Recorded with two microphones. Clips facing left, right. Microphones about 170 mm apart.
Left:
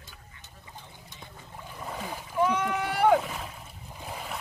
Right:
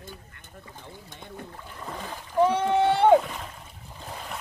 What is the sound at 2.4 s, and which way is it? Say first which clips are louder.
Rowboat: right 6 dB; 30° right (ahead or behind).